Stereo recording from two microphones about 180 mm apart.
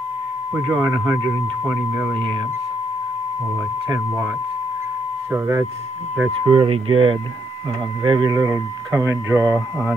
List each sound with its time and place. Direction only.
0.6 s speech: 20° right (ahead or behind)
5.3 s speech: 15° right (ahead or behind)
6.4 s speech: 30° right (ahead or behind); by 9.9 s 15° right (ahead or behind)